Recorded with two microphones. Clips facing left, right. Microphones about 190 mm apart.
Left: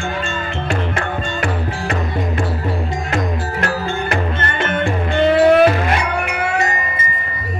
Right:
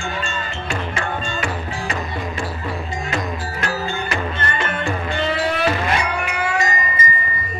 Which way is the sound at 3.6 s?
50° left (ahead or behind).